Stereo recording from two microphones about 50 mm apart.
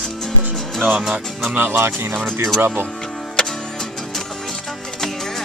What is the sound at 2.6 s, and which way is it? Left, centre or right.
Speech, right.